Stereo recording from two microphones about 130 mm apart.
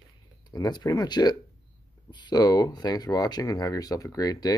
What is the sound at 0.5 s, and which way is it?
Speech, 30° left (ahead or behind).